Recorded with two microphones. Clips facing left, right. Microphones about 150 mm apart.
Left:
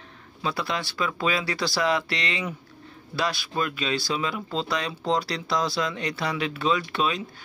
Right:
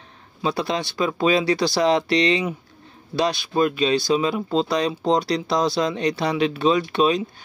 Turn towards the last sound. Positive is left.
turn(degrees=-20)  # may be behind; listen again after turning